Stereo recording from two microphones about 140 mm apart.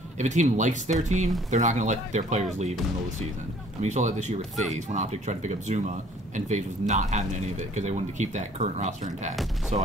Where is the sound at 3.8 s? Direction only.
55° right (ahead or behind).